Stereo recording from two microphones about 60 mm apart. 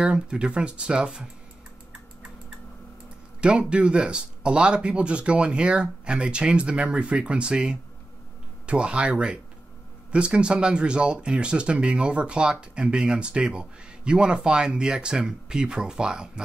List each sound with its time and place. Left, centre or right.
0.0 s speech: centre
3.3 s speech: centre